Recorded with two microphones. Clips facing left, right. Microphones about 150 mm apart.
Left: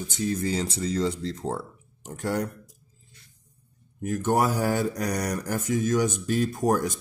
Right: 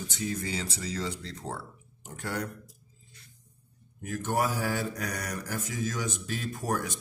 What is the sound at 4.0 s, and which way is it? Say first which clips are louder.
Speech: left 6 dB; 45° left (ahead or behind).